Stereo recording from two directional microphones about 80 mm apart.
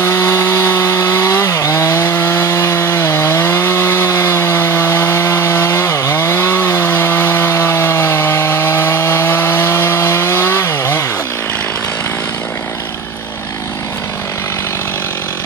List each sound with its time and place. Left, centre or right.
0.0 s chainsaw: left
2.0 s wood: left